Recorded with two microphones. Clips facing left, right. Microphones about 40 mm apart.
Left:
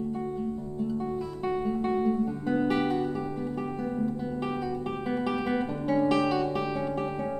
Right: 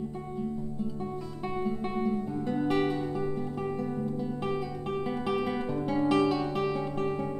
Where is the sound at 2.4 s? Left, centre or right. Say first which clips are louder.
Left 3 dB; centre.